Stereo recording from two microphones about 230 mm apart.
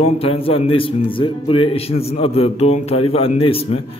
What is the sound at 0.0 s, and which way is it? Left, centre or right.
A man's voice, left.